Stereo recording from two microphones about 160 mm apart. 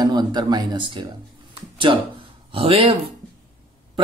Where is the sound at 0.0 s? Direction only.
25° right (ahead or behind).